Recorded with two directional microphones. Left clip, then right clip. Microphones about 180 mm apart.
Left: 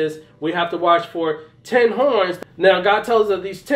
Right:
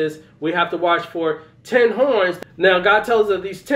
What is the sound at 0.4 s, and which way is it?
Speech, 20° left (ahead or behind).